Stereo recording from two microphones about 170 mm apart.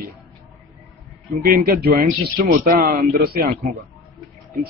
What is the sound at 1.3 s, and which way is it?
Speech, 55° right (ahead or behind).